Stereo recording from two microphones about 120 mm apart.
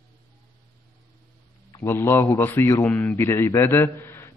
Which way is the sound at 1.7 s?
25° left (ahead or behind).